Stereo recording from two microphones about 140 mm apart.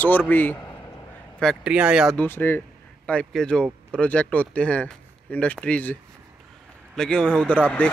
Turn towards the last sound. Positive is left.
turn(degrees=10)  # may be behind; listen again after turning